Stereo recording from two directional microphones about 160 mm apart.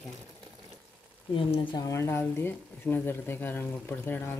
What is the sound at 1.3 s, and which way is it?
Speech, 30° left (ahead or behind).